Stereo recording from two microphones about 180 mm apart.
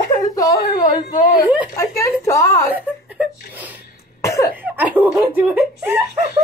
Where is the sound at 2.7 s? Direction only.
10° right (ahead or behind).